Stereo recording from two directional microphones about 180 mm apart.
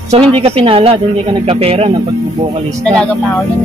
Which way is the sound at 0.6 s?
30° right (ahead or behind).